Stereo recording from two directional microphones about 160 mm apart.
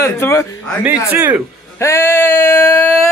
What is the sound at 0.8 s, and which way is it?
Speech, 10° right (ahead or behind).